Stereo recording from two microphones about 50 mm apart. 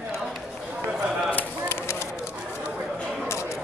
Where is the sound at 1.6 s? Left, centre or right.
Left.